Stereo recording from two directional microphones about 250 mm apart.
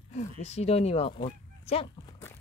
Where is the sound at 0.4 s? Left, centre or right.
Left.